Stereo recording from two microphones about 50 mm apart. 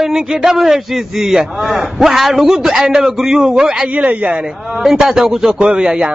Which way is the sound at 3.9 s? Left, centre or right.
Right.